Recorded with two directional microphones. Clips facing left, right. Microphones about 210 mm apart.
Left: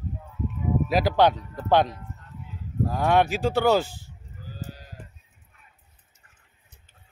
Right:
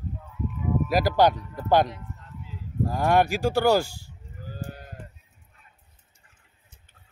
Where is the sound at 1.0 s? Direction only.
10° right (ahead or behind).